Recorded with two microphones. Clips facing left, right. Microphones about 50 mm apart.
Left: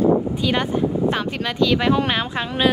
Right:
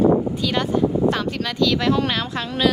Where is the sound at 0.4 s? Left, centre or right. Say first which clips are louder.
Even; centre.